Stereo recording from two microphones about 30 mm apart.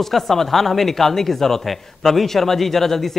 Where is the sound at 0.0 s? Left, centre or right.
Centre.